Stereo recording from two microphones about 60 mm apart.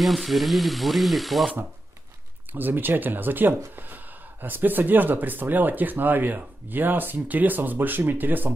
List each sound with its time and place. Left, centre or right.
0.0 s ratchet: centre
2.5 s speech: right